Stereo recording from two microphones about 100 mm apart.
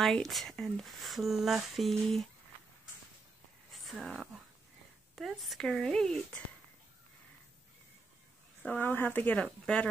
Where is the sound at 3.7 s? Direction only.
Centre (ahead or behind).